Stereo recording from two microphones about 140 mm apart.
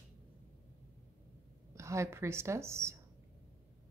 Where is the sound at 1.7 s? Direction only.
20° right (ahead or behind).